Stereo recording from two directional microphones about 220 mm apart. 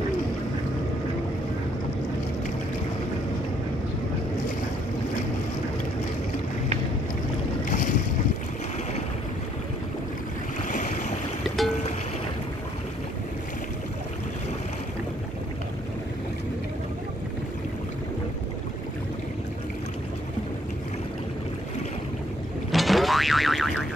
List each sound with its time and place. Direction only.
7.6 s boat: 35° left (ahead or behind)
10.7 s boat: 35° left (ahead or behind)
22.7 s boing: centre (ahead or behind)